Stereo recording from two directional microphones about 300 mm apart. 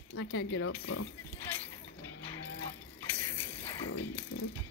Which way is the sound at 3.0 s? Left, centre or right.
Centre.